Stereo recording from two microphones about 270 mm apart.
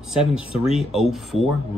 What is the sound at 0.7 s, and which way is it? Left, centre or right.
Speech, centre.